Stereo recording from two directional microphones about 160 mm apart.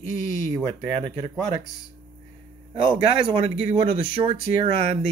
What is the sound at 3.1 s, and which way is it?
Speech, 35° right (ahead or behind).